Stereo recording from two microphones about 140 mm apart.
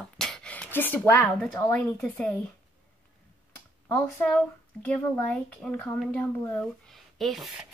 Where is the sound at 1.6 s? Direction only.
15° left (ahead or behind).